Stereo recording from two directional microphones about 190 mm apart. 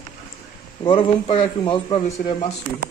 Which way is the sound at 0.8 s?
30° left (ahead or behind).